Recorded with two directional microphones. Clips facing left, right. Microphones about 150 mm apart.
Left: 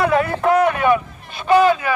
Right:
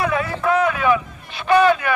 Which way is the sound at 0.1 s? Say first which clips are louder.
Left 4 dB; 50° left (ahead or behind).